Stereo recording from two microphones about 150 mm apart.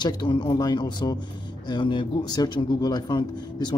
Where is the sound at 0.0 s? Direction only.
30° left (ahead or behind).